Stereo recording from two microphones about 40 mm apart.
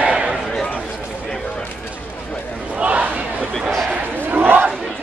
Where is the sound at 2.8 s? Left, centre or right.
Right.